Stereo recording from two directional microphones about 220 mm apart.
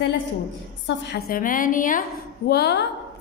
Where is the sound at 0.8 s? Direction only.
50° left (ahead or behind).